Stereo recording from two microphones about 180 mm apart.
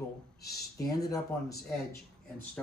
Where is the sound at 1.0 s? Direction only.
20° left (ahead or behind).